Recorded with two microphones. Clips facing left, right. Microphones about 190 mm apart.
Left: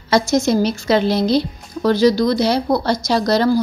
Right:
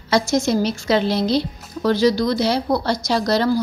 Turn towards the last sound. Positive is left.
turn(degrees=45)  # may be behind; listen again after turning